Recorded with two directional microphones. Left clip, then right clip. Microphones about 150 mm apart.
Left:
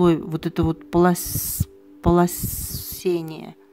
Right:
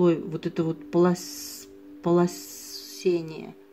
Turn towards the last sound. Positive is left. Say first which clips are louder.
# left 2 dB
turn(degrees=50)  # may be behind; listen again after turning